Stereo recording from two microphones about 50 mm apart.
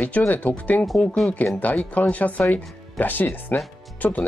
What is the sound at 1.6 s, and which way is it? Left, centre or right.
Speech, left.